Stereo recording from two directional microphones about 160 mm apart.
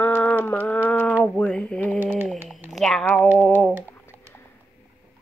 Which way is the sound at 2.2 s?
Centre (ahead or behind).